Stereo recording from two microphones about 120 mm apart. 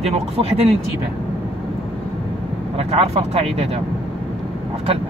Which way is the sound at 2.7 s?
60° right (ahead or behind).